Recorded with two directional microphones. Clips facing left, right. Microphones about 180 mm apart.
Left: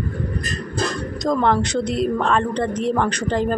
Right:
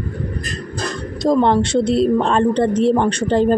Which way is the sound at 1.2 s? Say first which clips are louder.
Right 4 dB; 25° right (ahead or behind).